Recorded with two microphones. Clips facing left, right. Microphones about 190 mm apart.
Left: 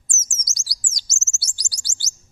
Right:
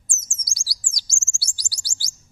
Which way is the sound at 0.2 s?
20° left (ahead or behind).